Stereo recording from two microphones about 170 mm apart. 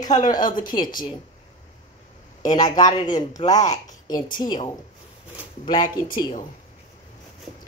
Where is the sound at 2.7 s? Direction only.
25° left (ahead or behind).